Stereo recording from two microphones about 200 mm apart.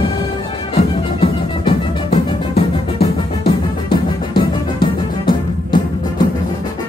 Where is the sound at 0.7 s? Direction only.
25° left (ahead or behind).